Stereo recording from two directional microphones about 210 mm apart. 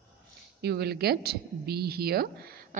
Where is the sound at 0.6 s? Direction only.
50° right (ahead or behind).